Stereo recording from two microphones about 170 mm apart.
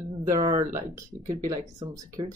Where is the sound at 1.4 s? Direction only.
25° right (ahead or behind).